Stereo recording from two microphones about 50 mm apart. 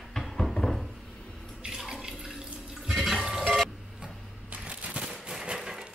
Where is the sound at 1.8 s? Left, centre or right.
Centre.